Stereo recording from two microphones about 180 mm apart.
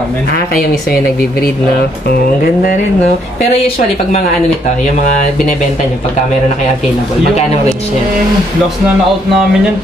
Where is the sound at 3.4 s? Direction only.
40° left (ahead or behind).